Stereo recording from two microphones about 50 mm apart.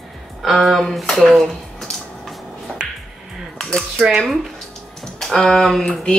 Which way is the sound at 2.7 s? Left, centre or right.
Centre.